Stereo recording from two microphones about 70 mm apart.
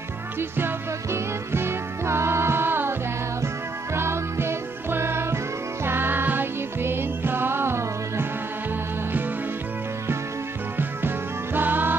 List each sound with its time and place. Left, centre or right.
0.4 s music: right
10.8 s music: right